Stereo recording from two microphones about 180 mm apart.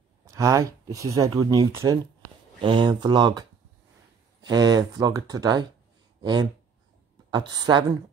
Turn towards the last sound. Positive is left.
turn(degrees=-25)  # may be behind; listen again after turning